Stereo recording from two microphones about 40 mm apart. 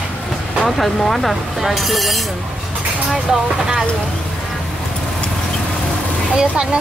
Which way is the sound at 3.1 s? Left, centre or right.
Centre.